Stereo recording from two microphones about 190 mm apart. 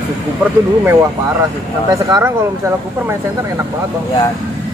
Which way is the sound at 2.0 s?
20° right (ahead or behind).